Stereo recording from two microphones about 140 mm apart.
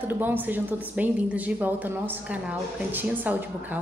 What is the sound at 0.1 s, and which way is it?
Speech, 15° right (ahead or behind).